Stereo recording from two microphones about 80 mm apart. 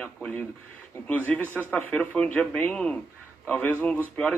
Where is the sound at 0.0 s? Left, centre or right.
Centre.